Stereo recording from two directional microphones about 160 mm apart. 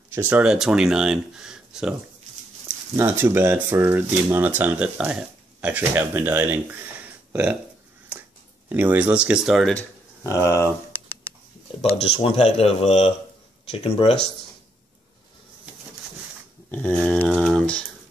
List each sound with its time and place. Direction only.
0.1 s speech: 10° right (ahead or behind)
3.0 s speech: 15° right (ahead or behind)
8.6 s speech: 10° right (ahead or behind)
10.2 s speech: 20° left (ahead or behind)
11.8 s speech: 35° left (ahead or behind)
16.7 s a sound: 10° left (ahead or behind)